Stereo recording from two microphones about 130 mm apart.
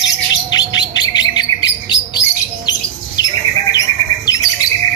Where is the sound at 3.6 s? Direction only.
30° left (ahead or behind).